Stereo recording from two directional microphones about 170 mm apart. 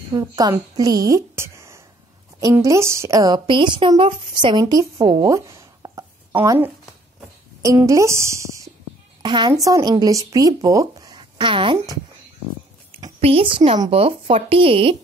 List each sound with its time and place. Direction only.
0.1 s a woman's voice: 20° right (ahead or behind)